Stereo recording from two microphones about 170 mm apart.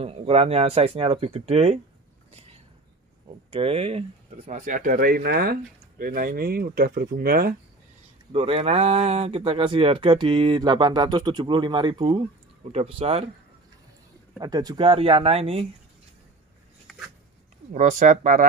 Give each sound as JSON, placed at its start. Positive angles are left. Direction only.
{"t": 0.0, "sound": "speech", "side_deg": -35}
{"t": 2.3, "sound": "a sound", "side_deg": -40}
{"t": 3.4, "sound": "speech", "side_deg": -35}
{"t": 4.5, "sound": "speech", "side_deg": -50}
{"t": 8.3, "sound": "speech", "side_deg": -35}
{"t": 14.4, "sound": "speech", "side_deg": -20}
{"t": 17.7, "sound": "speech", "side_deg": -45}